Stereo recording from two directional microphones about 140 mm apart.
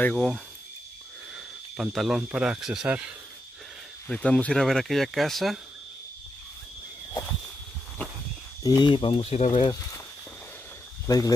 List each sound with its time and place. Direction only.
0.0 s speech: 5° left (ahead or behind)
1.3 s speech: centre (ahead or behind)
4.1 s speech: 5° left (ahead or behind)
8.6 s speech: 30° left (ahead or behind)
11.1 s speech: 25° left (ahead or behind)